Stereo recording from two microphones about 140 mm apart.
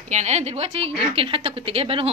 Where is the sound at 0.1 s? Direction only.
55° right (ahead or behind).